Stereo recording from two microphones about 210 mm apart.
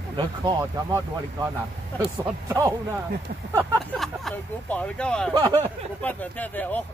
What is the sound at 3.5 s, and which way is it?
Speech, 5° left (ahead or behind).